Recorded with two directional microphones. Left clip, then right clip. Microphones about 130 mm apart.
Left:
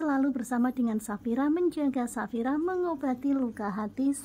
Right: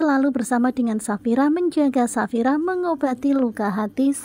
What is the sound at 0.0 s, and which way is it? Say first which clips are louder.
Speech: right 9 dB; 45° right (ahead or behind).